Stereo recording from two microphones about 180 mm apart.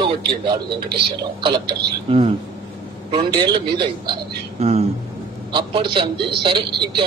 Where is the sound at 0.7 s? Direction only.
65° right (ahead or behind).